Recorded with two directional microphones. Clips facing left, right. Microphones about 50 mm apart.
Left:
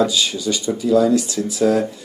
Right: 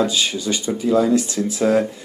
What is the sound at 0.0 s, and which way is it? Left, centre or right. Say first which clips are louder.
Speech: left 1 dB; right.